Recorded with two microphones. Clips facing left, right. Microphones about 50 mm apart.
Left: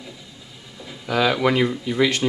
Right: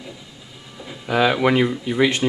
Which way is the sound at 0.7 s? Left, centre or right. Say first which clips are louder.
Right 2 dB; centre.